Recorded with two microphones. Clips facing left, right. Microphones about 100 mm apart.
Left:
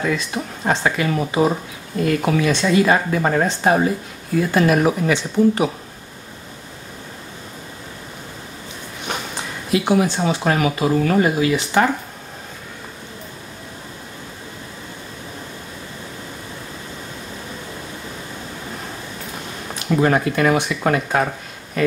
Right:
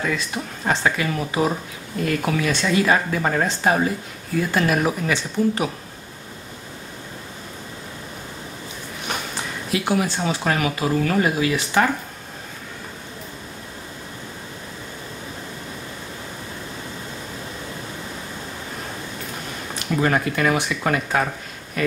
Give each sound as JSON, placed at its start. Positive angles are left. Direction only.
{"t": 0.0, "sound": "speech", "side_deg": 10}
{"t": 9.7, "sound": "speech", "side_deg": 15}
{"t": 10.0, "sound": "speech", "side_deg": 0}
{"t": 20.0, "sound": "speech", "side_deg": 10}